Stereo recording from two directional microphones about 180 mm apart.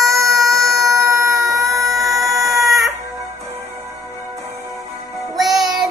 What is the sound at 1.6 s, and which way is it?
Chicken, centre (ahead or behind).